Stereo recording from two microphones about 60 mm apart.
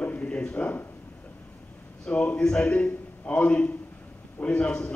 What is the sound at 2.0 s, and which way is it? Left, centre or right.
A man's voice, centre.